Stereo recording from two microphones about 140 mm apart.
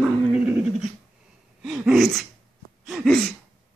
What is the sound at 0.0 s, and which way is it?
Dog, 10° right (ahead or behind).